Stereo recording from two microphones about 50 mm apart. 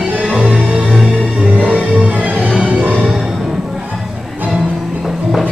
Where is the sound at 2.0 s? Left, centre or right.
Right.